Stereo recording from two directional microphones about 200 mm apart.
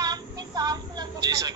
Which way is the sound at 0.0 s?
20° right (ahead or behind).